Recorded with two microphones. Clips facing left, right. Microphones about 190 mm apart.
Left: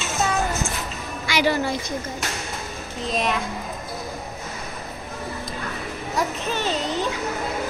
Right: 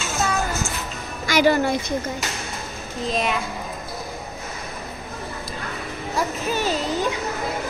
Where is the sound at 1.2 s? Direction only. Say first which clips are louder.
Right 4 dB; 45° right (ahead or behind).